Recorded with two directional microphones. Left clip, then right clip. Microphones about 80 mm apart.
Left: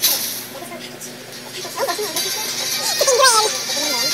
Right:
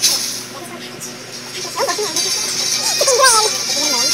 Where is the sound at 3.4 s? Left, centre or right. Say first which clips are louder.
Right 2 dB; left.